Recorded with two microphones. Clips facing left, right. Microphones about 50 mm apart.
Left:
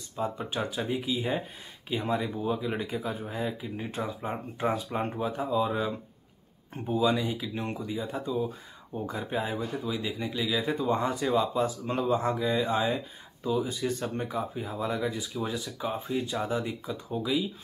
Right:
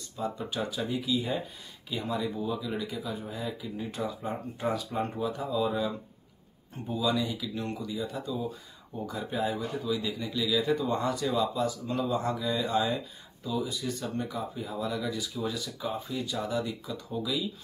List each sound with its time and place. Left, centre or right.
0.2 s speech: left